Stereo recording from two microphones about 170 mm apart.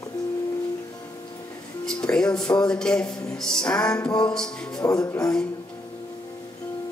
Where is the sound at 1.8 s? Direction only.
5° left (ahead or behind).